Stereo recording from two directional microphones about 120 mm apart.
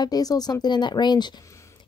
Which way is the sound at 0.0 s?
30° left (ahead or behind).